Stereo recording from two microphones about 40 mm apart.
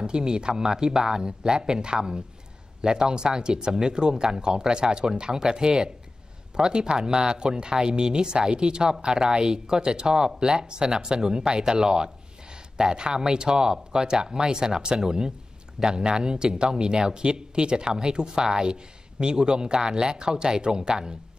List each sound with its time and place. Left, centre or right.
0.0 s speech: centre